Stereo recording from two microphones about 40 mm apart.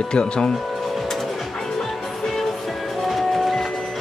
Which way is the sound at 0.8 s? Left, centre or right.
Centre.